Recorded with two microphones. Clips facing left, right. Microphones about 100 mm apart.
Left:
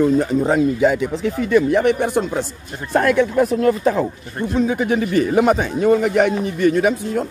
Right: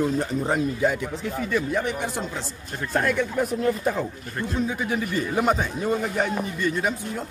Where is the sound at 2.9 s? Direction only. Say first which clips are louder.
Left 8 dB; 85° left.